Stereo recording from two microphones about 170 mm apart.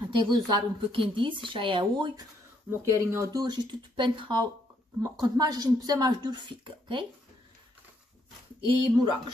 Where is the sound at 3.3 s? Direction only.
25° right (ahead or behind).